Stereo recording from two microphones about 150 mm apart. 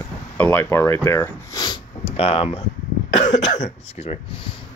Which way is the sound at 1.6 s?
35° left (ahead or behind).